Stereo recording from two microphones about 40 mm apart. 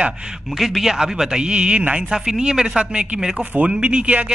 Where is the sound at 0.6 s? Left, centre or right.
Centre.